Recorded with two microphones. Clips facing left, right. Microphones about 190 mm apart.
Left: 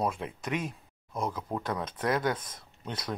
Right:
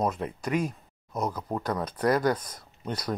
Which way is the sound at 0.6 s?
40° right (ahead or behind).